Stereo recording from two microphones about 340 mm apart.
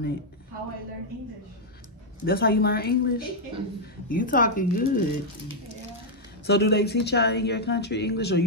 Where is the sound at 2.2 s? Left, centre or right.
Left.